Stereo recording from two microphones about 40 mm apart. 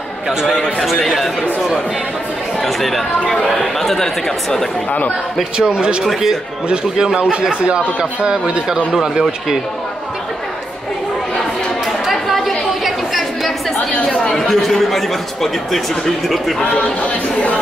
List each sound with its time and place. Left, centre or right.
0.5 s speech: centre
1.0 s speech: centre
2.6 s speech: centre
5.6 s a man's voice: right
8.9 s speech: centre
12.1 s chatter: centre
14.4 s speech: centre
16.6 s speech: left